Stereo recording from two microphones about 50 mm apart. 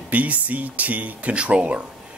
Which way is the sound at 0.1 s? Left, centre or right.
Right.